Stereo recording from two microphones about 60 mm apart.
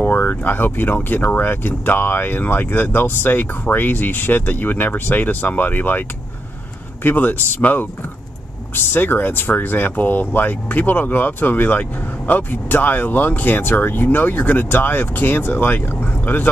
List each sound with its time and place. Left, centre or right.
0.0 s speech: left